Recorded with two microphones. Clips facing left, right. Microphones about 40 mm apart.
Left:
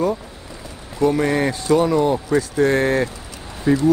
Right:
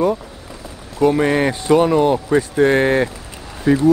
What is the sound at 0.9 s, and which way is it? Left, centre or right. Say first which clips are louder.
Speech: right 3 dB; right.